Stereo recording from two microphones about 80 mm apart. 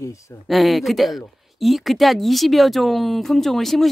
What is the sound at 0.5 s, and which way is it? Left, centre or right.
Speech, centre.